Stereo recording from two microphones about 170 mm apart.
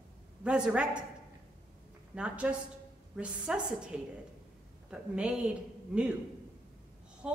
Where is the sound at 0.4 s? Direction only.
5° right (ahead or behind).